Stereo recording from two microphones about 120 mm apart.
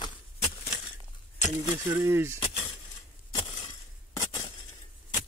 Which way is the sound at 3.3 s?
40° left (ahead or behind).